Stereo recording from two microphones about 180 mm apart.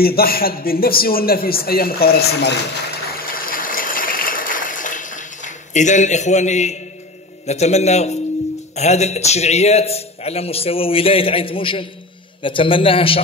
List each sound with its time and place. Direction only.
0.0 s a man's voice: 55° left (ahead or behind)
3.2 s a sound: 50° left (ahead or behind)
7.4 s a man's voice: 40° left (ahead or behind)